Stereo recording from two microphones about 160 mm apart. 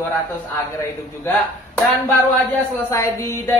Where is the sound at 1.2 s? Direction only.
15° left (ahead or behind).